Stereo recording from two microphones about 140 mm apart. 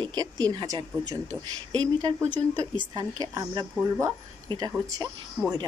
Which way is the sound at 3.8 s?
15° right (ahead or behind).